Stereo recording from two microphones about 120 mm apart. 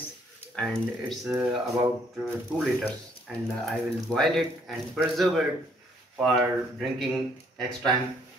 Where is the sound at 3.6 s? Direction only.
Centre (ahead or behind).